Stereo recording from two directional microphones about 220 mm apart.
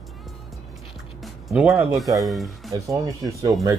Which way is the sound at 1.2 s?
Centre (ahead or behind).